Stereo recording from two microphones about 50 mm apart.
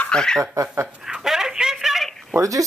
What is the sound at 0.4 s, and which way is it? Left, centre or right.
Speech, right.